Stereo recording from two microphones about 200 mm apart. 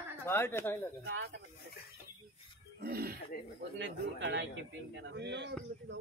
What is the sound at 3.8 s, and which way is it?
Speech, 60° right (ahead or behind).